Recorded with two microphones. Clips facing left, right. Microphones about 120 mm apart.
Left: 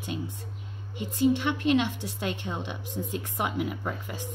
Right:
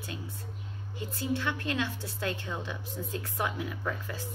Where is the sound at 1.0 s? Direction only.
20° left (ahead or behind).